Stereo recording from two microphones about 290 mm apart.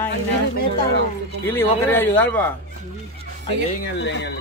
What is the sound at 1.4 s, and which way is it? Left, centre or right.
A man's voice, centre.